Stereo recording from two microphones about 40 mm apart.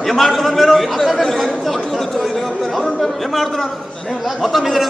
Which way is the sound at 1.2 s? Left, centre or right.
Centre.